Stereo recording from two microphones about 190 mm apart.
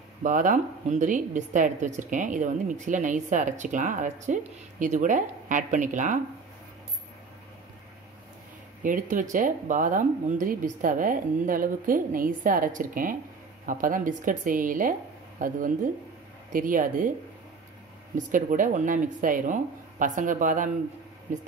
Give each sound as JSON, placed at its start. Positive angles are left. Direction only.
{"t": 0.2, "sound": "a woman's voice", "side_deg": -45}
{"t": 8.8, "sound": "speech", "side_deg": -45}
{"t": 18.1, "sound": "speech", "side_deg": -45}